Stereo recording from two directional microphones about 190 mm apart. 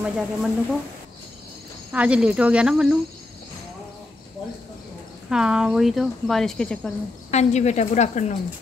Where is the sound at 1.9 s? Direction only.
5° right (ahead or behind).